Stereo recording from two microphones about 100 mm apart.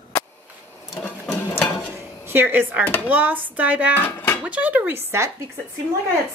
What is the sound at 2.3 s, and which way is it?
Speech, 20° right (ahead or behind).